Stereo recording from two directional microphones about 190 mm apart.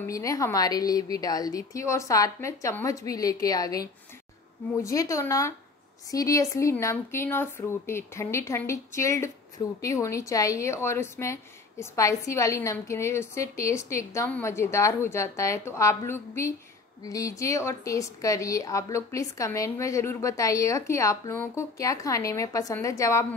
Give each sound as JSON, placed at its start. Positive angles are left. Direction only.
{"t": 0.0, "sound": "a woman's voice", "side_deg": 15}
{"t": 4.8, "sound": "a woman's voice", "side_deg": 15}